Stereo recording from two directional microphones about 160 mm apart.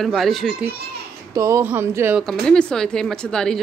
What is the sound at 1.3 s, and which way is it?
Speech, 20° right (ahead or behind).